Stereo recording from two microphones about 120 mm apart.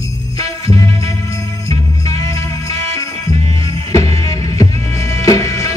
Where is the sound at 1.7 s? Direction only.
30° left (ahead or behind).